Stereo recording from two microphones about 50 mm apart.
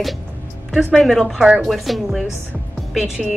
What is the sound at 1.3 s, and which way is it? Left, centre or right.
Speech, centre.